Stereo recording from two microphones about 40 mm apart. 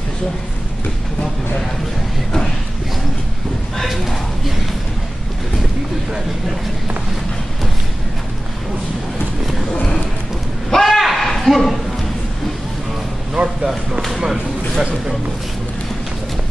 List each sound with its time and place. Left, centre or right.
3.7 s speech: centre
10.7 s a sound: centre
13.3 s speech: right
14.0 s speech: centre